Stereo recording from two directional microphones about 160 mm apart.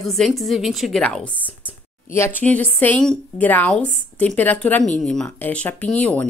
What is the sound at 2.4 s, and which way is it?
A woman's voice, 10° left (ahead or behind).